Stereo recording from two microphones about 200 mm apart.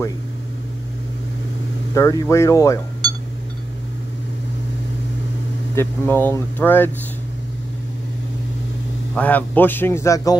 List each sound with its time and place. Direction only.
2.0 s speech: 15° left (ahead or behind)
5.8 s speech: 10° left (ahead or behind)
9.1 s speech: 10° left (ahead or behind)